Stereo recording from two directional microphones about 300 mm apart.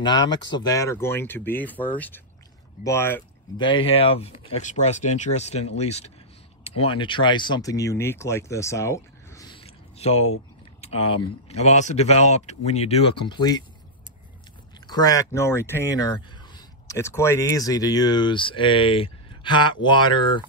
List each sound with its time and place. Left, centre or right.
0.0 s speech: centre
14.9 s speech: centre